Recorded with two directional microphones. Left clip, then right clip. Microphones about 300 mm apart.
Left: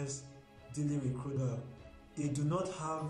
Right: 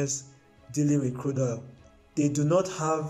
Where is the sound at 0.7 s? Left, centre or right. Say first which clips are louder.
Right 12 dB; right.